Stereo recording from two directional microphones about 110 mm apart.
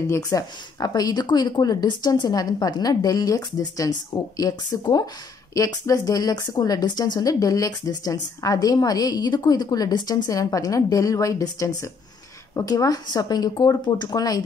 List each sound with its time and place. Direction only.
0.1 s speech: 35° left (ahead or behind)